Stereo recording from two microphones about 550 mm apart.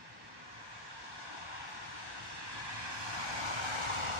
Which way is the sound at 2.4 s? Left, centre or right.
Right.